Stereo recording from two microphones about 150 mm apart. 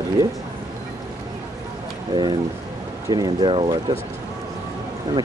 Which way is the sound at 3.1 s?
30° right (ahead or behind).